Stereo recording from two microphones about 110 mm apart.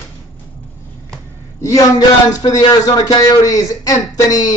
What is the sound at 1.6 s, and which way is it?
Speech, 30° left (ahead or behind).